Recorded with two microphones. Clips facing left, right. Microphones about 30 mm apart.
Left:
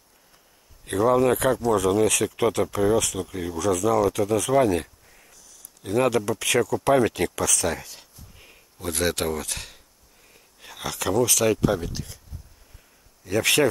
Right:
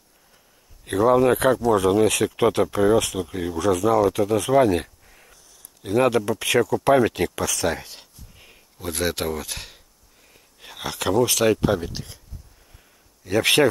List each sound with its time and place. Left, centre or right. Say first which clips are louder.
0.8 s speech: right 2 dB; centre
5.0 s a sound: right 2 dB; centre
5.8 s speech: right 2 dB; centre
7.3 s speech: right 1 dB; centre
8.4 s speech: even; centre
10.3 s a sound: right 2 dB; centre
11.6 s speech: right 1 dB; centre
13.4 s speech: right 3 dB; right